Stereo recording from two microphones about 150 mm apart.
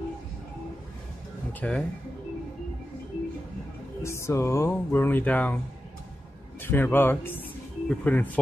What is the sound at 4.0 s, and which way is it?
Music, 20° left (ahead or behind).